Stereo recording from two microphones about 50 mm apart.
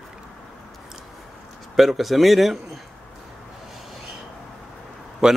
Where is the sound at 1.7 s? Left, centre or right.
Centre.